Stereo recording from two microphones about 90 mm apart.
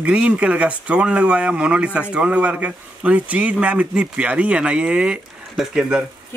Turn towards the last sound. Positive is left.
turn(degrees=-10)  # may be behind; listen again after turning